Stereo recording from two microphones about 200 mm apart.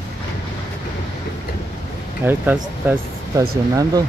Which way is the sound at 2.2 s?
5° right (ahead or behind).